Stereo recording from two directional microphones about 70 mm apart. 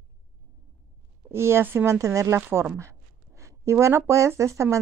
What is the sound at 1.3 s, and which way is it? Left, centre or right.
Speech, right.